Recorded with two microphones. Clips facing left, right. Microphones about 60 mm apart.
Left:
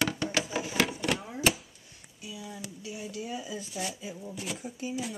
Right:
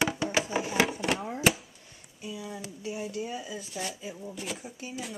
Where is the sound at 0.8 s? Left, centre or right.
Centre.